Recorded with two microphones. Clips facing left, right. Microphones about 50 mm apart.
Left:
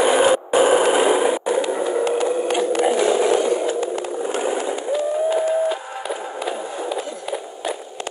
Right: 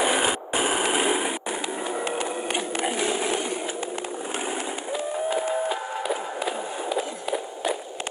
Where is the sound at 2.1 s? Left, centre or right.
Right.